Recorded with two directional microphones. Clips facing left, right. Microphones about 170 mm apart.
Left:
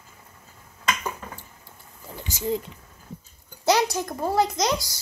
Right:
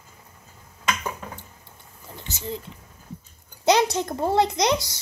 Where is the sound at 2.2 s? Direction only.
15° left (ahead or behind).